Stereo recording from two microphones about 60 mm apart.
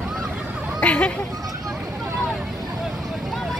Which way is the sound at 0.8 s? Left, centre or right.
Left.